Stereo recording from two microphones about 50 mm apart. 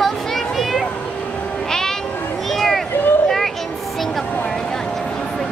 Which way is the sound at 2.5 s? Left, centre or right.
Centre.